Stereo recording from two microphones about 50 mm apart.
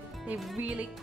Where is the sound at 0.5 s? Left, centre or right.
Right.